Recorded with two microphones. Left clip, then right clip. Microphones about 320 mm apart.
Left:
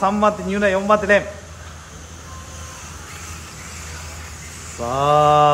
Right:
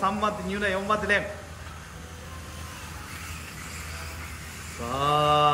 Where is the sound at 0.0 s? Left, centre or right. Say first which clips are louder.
Left 9 dB; centre.